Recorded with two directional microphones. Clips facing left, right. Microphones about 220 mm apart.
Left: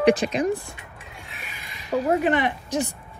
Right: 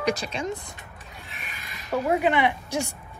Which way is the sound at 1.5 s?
15° left (ahead or behind).